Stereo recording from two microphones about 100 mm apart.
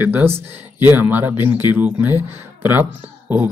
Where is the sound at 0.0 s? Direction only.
20° right (ahead or behind).